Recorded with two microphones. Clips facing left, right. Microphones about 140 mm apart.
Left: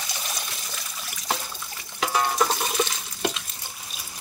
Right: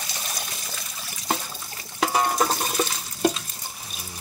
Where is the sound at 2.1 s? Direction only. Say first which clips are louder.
Even; 40° right (ahead or behind).